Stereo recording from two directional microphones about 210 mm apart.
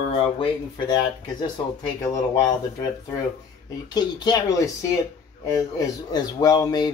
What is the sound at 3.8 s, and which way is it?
Speech, 20° left (ahead or behind).